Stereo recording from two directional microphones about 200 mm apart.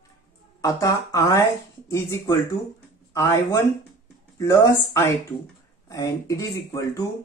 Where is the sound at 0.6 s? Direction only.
15° left (ahead or behind).